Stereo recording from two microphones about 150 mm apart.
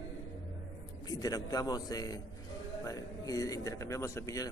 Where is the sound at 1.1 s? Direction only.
25° left (ahead or behind).